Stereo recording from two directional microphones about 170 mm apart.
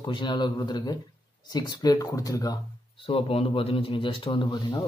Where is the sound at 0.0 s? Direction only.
25° left (ahead or behind).